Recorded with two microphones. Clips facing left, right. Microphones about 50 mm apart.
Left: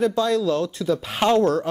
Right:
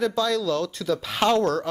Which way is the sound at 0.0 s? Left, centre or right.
Left.